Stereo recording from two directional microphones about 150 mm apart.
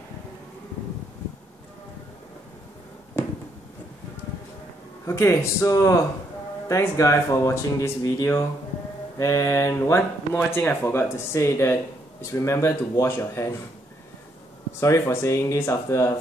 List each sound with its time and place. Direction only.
5.0 s speech: 20° left (ahead or behind)
14.8 s speech: 20° left (ahead or behind)